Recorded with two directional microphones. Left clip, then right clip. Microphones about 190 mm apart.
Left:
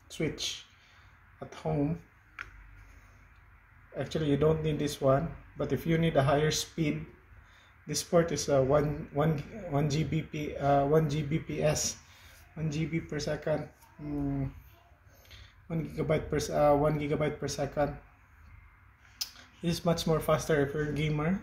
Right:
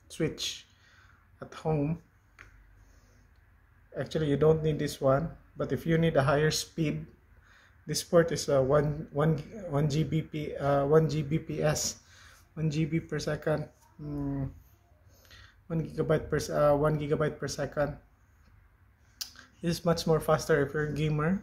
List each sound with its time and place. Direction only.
0.1 s speech: 5° right (ahead or behind)
3.9 s speech: centre (ahead or behind)
4.6 s speech: 35° right (ahead or behind)
5.0 s speech: centre (ahead or behind)
7.8 s speech: 10° right (ahead or behind)
15.2 s speech: 5° right (ahead or behind)
19.1 s speech: centre (ahead or behind)